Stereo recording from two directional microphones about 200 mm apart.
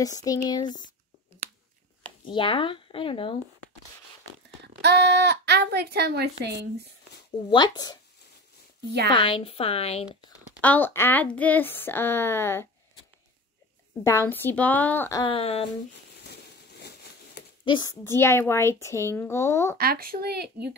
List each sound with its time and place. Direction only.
0.0 s speech: 20° left (ahead or behind)
2.2 s speech: 25° left (ahead or behind)
4.8 s speech: 55° right (ahead or behind)
7.4 s speech: 20° left (ahead or behind)
9.1 s speech: 25° left (ahead or behind)
10.6 s speech: 10° left (ahead or behind)
14.0 s speech: 10° left (ahead or behind); by 15.6 s 30° left (ahead or behind)
17.6 s speech: 20° left (ahead or behind)
19.8 s speech: 50° right (ahead or behind)